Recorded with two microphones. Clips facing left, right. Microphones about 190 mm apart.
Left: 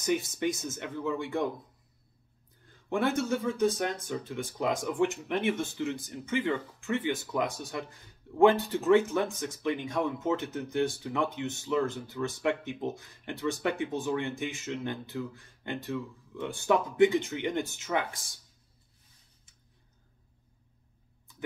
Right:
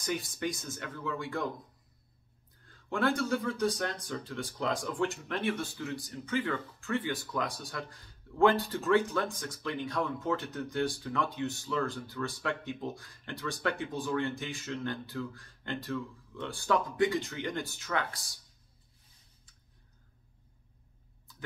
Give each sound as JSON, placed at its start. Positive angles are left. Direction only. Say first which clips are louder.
{"t": 0.0, "sound": "speech", "louder": "left 5 dB", "side_deg": 20}
{"t": 2.9, "sound": "speech", "louder": "left 2 dB", "side_deg": 20}